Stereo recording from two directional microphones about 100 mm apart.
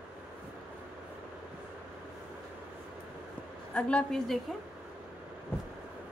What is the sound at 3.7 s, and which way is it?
Speech, 5° left (ahead or behind).